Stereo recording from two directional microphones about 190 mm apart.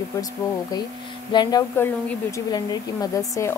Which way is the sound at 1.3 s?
20° left (ahead or behind).